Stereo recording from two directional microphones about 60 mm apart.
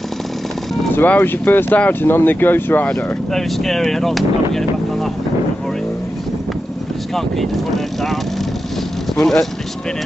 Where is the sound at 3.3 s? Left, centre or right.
Centre.